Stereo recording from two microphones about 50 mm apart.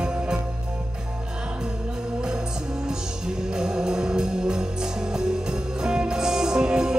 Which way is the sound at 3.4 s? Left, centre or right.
Centre.